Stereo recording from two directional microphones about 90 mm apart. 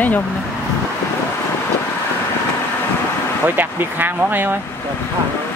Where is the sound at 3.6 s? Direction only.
20° right (ahead or behind).